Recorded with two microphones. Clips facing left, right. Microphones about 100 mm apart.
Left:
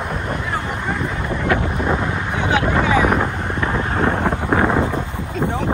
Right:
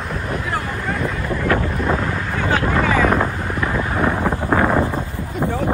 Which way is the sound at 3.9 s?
55° left (ahead or behind).